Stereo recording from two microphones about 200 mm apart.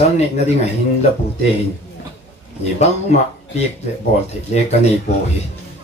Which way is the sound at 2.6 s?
35° left (ahead or behind).